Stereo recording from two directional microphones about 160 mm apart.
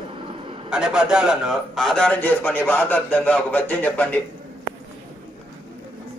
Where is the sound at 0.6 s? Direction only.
5° right (ahead or behind).